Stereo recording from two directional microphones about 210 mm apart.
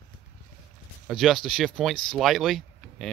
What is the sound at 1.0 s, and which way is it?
Speech, centre (ahead or behind).